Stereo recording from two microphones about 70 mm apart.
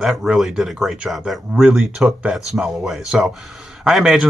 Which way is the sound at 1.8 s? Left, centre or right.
Centre.